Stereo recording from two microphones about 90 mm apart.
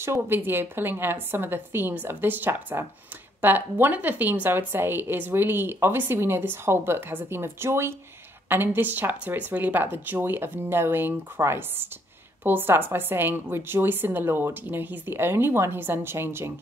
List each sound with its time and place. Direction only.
0.0 s a woman's voice: 25° right (ahead or behind)